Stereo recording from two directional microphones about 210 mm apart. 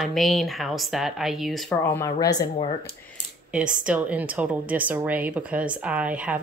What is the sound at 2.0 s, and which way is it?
Speech, 15° left (ahead or behind).